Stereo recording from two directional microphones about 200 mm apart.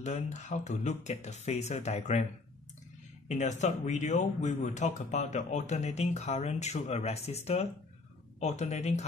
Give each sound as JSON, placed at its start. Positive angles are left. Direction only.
{"t": 0.0, "sound": "speech", "side_deg": 35}
{"t": 3.3, "sound": "speech", "side_deg": 35}